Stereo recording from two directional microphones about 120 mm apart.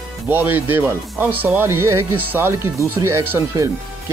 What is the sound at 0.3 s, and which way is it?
Speech, 15° right (ahead or behind).